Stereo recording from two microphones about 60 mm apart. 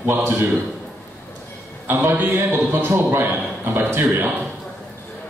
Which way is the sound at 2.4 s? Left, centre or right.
Right.